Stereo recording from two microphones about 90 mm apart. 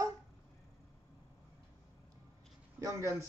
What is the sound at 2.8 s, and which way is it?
Speech, 35° right (ahead or behind).